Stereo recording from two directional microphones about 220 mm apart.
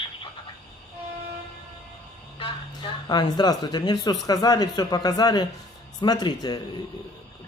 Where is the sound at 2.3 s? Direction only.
20° left (ahead or behind).